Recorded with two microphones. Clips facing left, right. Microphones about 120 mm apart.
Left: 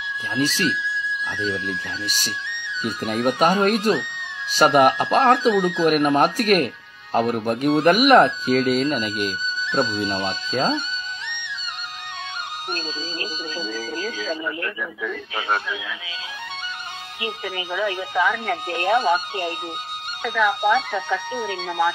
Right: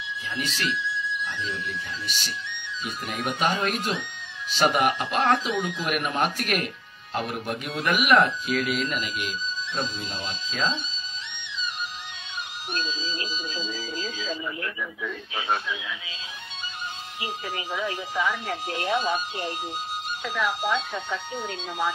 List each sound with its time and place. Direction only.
0.4 s speech: 35° left (ahead or behind)
2.0 s speech: 40° left (ahead or behind)
9.7 s speech: 80° left; by 11.0 s 55° left (ahead or behind)
12.7 s music: 55° left (ahead or behind)
15.3 s speech: 60° left (ahead or behind)
17.7 s speech: 75° left (ahead or behind); by 19.5 s 60° left (ahead or behind)
20.2 s speech: 70° left (ahead or behind)